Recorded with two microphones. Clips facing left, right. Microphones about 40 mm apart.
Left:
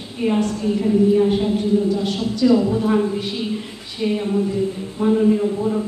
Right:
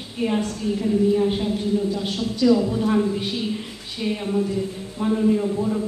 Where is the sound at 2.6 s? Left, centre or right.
Centre.